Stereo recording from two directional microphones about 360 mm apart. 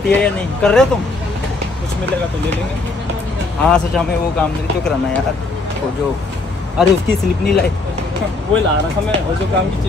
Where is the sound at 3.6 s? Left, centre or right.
Centre.